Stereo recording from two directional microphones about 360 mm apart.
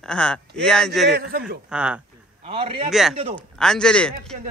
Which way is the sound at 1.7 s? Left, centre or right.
Centre.